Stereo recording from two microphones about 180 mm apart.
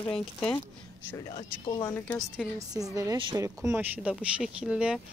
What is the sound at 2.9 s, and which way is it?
Speech, 20° right (ahead or behind).